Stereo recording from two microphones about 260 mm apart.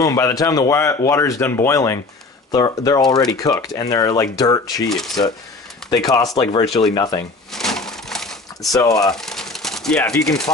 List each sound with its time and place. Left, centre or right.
0.0 s speech: centre
3.0 s speech: centre
3.3 s speech: centre
4.8 s speech: centre
5.9 s speech: centre
7.5 s a sound: centre
9.0 s speech: centre